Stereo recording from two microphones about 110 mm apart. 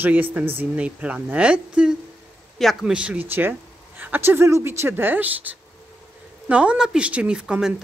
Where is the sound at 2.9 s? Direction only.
10° right (ahead or behind).